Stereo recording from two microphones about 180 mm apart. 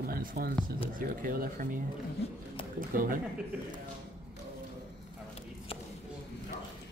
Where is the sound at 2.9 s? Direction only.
50° right (ahead or behind).